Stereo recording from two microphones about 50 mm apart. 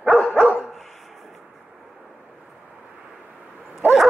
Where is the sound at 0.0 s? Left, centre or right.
Centre.